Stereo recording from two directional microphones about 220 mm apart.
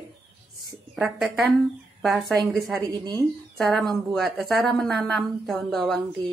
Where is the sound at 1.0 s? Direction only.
Centre (ahead or behind).